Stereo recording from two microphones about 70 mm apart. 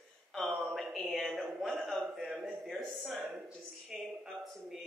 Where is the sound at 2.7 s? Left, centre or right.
Centre.